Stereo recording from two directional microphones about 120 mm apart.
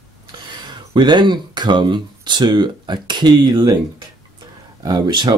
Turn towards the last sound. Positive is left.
turn(degrees=-35)  # may be behind; listen again after turning